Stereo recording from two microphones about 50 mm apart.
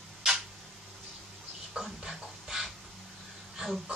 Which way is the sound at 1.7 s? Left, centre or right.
Centre.